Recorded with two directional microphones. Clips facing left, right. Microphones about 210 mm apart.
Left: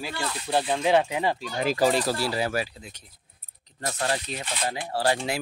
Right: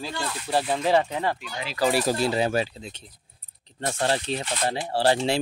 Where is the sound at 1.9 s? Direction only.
20° right (ahead or behind).